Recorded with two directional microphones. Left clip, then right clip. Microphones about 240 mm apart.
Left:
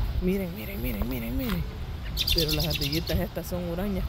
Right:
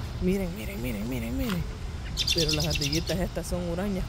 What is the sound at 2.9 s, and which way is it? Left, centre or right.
Speech, centre.